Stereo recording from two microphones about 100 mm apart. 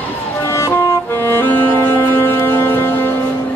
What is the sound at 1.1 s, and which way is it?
Music, 20° left (ahead or behind).